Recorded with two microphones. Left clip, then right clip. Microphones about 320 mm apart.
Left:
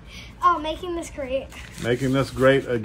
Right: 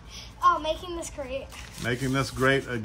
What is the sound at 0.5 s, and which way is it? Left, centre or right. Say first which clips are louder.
A woman's voice: left 2 dB; centre.